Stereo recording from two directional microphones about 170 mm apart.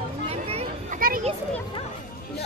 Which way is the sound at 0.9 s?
55° right (ahead or behind).